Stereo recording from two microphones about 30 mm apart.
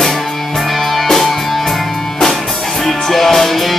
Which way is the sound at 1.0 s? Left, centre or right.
Centre.